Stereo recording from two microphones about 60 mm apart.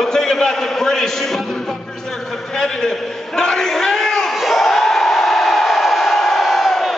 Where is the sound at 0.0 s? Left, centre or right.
Centre.